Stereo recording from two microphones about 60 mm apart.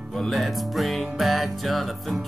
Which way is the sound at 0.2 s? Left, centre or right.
Centre.